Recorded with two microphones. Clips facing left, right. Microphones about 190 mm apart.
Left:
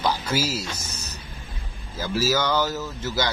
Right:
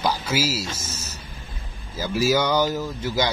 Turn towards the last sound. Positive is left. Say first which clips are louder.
# right 2 dB
turn(degrees=-15)  # may be behind; listen again after turning